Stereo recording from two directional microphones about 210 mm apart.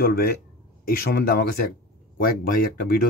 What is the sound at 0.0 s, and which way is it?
Speech, 45° left (ahead or behind).